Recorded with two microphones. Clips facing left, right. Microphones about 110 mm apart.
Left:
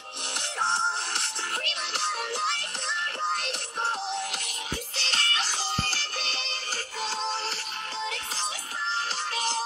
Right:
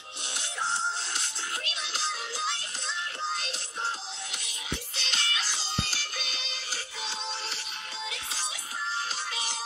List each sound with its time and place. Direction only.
0.4 s music: 70° left (ahead or behind)
5.0 s music: 40° left (ahead or behind)
9.3 s music: 50° left (ahead or behind)